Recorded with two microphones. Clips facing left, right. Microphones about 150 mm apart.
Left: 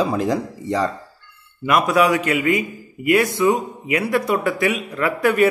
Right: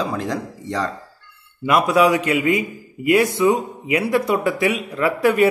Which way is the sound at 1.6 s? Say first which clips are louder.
Right 1 dB; 25° right (ahead or behind).